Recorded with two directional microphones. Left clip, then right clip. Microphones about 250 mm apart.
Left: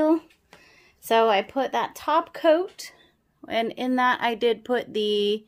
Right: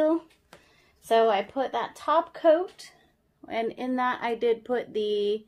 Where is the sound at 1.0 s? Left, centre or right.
Left.